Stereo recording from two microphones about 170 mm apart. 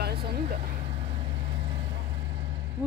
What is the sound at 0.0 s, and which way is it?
Vehicle, 65° right (ahead or behind).